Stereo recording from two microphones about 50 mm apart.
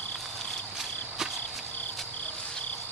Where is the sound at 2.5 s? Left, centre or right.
Left.